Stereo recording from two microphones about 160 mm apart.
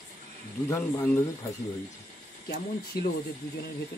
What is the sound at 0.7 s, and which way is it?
Speech, 20° left (ahead or behind).